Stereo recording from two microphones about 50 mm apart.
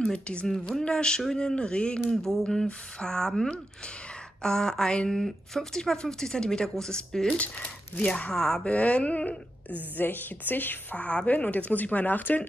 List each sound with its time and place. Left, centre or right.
0.0 s speech: centre
0.5 s speech: centre
7.2 s speech: left
8.6 s speech: left
9.9 s a woman's voice: left